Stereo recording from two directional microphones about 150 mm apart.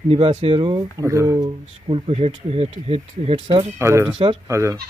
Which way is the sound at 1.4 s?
35° right (ahead or behind).